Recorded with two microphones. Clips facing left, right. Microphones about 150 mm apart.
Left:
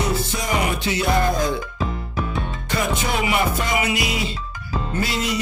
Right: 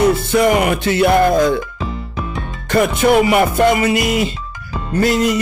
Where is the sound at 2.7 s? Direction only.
55° right (ahead or behind).